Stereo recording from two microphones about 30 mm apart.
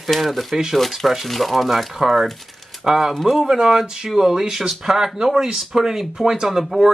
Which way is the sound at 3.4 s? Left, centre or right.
Centre.